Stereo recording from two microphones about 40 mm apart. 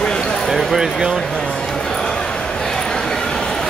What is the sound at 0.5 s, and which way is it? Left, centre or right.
Speech, centre.